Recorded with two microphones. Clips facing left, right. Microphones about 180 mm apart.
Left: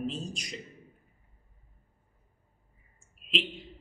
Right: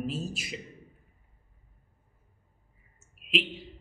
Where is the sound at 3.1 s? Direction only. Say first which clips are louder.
Right 3 dB; 5° right (ahead or behind).